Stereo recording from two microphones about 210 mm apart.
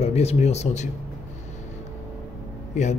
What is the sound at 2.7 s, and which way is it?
Speech, 35° left (ahead or behind).